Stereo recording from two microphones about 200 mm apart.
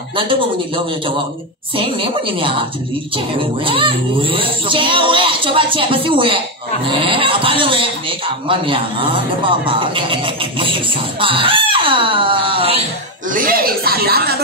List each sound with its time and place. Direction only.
0.1 s speech: 25° right (ahead or behind)
1.8 s speech: 25° right (ahead or behind)
13.3 s speech: 45° right (ahead or behind)